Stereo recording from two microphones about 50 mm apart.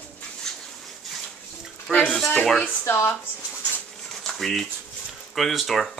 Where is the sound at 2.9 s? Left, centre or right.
Left.